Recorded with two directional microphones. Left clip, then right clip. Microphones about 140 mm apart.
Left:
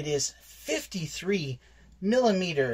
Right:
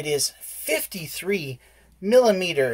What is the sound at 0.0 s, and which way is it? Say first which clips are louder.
Speech: right 5 dB; 35° right (ahead or behind).